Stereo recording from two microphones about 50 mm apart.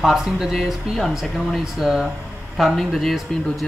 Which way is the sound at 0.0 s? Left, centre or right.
Centre.